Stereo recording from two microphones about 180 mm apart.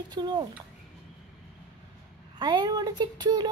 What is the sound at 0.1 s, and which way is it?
Speech, 25° right (ahead or behind).